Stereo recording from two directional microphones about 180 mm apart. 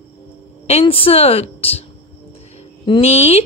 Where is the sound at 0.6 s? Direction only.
35° left (ahead or behind).